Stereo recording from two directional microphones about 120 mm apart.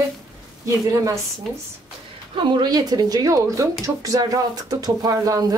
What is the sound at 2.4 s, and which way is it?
Speech, 40° right (ahead or behind).